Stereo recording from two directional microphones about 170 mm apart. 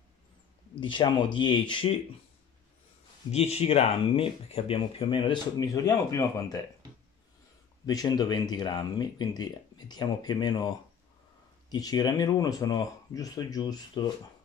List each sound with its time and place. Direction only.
0.7 s speech: 30° left (ahead or behind)
3.3 s speech: 35° left (ahead or behind); by 6.6 s 20° left (ahead or behind)
7.8 s speech: 20° left (ahead or behind)
11.7 s speech: 25° left (ahead or behind)